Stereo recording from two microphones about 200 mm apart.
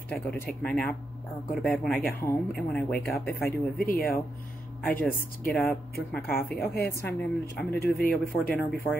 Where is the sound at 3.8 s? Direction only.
45° left (ahead or behind).